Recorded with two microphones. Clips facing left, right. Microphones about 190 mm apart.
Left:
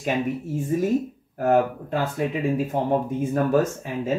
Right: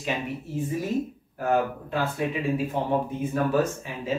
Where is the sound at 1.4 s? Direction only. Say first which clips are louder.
Left 4 dB; 45° left (ahead or behind).